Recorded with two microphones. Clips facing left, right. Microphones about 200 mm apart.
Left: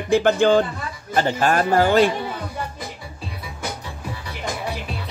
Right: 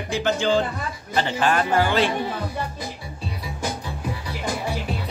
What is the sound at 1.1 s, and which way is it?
Speech, 45° left (ahead or behind).